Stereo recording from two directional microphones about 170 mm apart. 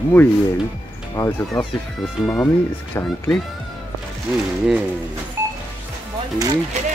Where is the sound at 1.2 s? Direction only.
10° left (ahead or behind).